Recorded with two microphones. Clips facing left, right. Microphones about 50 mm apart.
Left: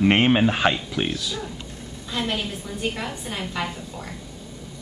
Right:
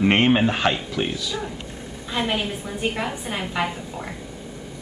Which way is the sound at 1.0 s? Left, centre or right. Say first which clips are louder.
Right 1 dB; centre.